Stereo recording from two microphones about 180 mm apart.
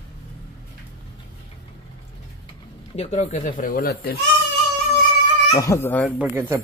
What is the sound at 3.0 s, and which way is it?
Speech, 40° left (ahead or behind).